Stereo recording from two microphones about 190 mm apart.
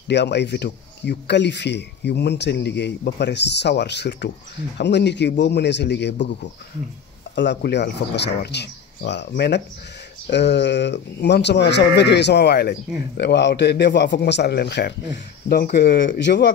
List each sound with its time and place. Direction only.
0.1 s speech: 65° left (ahead or behind)
16.2 s speech: 70° left (ahead or behind)